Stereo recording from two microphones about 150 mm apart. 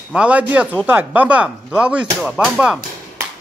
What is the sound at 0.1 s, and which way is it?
A man's voice, 10° right (ahead or behind).